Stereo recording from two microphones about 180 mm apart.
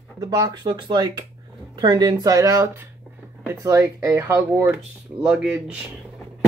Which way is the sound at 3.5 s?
15° right (ahead or behind).